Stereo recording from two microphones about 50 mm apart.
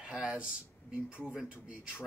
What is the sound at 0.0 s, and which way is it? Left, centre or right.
Speech, centre.